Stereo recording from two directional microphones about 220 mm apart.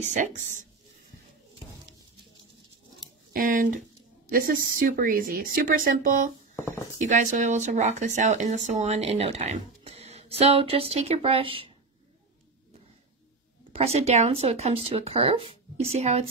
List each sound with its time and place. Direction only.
0.0 s speech: 30° right (ahead or behind)
3.3 s speech: 40° right (ahead or behind)
6.5 s speech: 15° left (ahead or behind)
7.0 s speech: 35° right (ahead or behind)
13.7 s speech: 30° right (ahead or behind)